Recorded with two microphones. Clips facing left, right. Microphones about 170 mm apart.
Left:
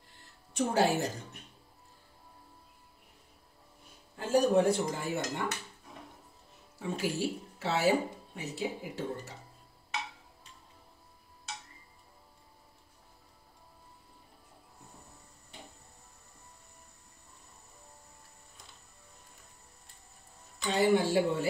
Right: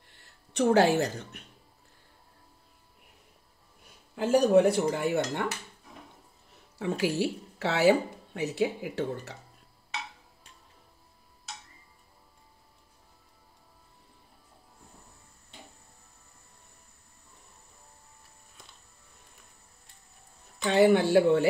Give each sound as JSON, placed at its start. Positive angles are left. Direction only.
{"t": 0.5, "sound": "speech", "side_deg": -70}
{"t": 4.1, "sound": "speech", "side_deg": -80}
{"t": 6.8, "sound": "speech", "side_deg": -85}
{"t": 20.5, "sound": "speech", "side_deg": -65}